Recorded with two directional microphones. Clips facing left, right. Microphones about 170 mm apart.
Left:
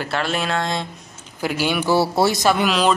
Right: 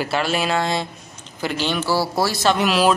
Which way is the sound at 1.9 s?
25° left (ahead or behind).